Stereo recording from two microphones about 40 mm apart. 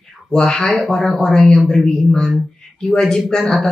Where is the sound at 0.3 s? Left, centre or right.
Left.